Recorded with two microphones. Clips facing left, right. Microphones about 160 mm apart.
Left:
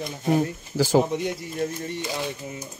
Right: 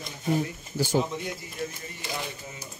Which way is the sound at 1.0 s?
50° left (ahead or behind).